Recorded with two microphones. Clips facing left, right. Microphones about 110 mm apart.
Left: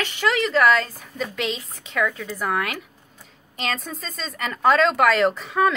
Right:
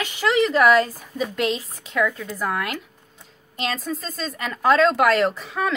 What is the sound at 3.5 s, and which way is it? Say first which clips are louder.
Speech: right 2 dB; centre (ahead or behind).